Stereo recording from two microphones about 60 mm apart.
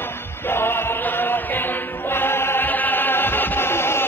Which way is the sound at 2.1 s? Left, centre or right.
Left.